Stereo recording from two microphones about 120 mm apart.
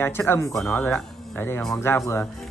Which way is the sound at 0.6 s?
10° left (ahead or behind).